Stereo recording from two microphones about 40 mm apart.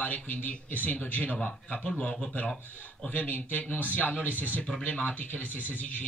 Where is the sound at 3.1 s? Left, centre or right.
Left.